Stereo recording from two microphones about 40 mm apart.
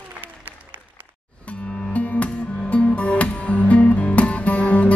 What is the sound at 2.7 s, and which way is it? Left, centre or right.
Music, left.